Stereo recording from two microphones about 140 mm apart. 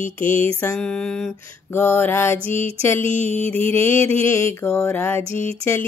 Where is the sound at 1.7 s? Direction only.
15° left (ahead or behind).